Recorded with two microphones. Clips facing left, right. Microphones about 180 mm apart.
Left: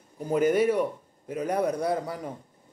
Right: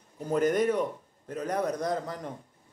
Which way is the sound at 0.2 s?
10° left (ahead or behind).